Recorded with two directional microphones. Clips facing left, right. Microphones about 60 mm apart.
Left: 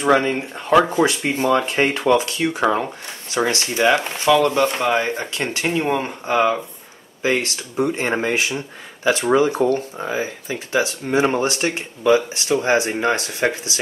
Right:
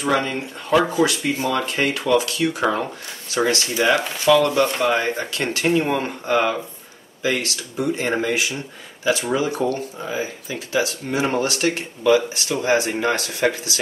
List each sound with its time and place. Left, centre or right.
0.0 s speech: left